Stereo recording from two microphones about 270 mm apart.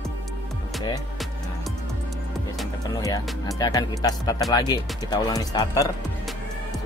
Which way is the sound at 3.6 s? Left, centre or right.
Centre.